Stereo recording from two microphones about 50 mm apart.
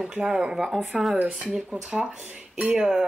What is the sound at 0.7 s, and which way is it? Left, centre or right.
Speech, centre.